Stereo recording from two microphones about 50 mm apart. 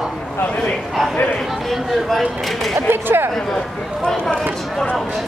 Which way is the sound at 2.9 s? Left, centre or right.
Right.